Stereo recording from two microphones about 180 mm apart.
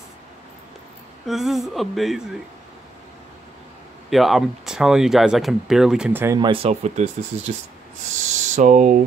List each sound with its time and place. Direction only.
1.2 s speech: centre (ahead or behind)
4.1 s speech: centre (ahead or behind)
6.4 s speech: 30° right (ahead or behind)